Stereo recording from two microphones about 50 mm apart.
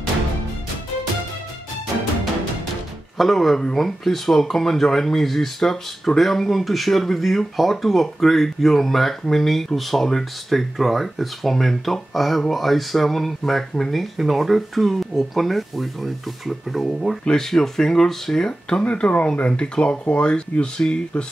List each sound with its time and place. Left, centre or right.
3.2 s speech: centre
17.2 s speech: centre; by 19.5 s left
19.5 s speech: centre